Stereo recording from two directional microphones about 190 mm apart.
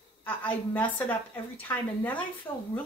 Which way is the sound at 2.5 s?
25° left (ahead or behind).